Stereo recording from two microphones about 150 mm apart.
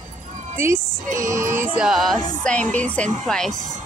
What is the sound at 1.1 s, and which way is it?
Music, 20° right (ahead or behind).